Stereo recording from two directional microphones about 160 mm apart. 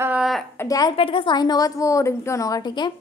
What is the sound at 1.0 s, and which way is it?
A woman's voice, 30° left (ahead or behind).